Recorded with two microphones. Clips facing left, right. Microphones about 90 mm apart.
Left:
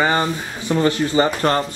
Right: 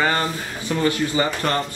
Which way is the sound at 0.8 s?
30° left (ahead or behind).